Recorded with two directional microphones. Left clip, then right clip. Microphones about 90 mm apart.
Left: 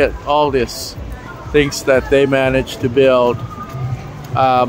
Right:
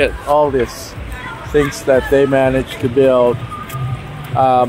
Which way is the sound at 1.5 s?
50° left (ahead or behind).